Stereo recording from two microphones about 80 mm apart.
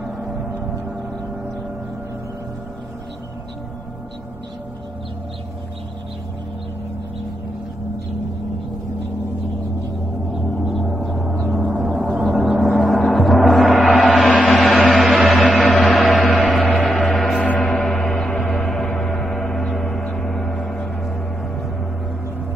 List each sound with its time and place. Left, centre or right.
10.3 s gong: centre
12.3 s gong: centre
14.5 s a sound: centre
15.5 s music: centre
16.8 s gong: centre
17.4 s gong: centre